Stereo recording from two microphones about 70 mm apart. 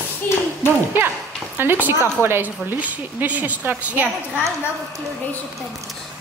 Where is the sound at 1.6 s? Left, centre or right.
Right.